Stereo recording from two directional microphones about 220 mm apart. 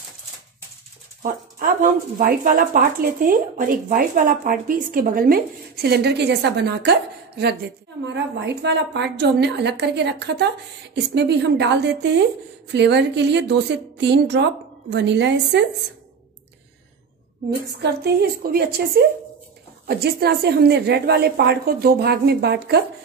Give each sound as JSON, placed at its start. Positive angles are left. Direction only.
{"t": 1.2, "sound": "a woman's voice", "side_deg": -40}
{"t": 17.7, "sound": "a woman's voice", "side_deg": -45}